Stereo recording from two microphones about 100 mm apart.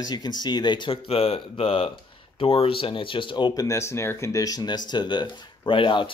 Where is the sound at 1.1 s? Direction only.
75° left (ahead or behind).